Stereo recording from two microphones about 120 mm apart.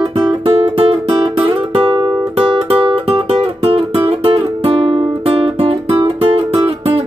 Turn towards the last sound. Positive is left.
turn(degrees=-50)  # may be behind; listen again after turning